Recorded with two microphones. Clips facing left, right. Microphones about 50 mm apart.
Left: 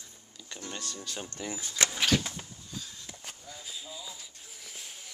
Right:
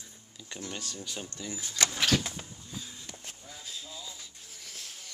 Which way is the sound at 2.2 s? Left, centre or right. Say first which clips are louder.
Right 1 dB; centre.